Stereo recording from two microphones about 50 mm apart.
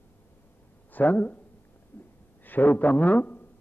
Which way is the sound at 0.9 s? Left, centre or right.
Left.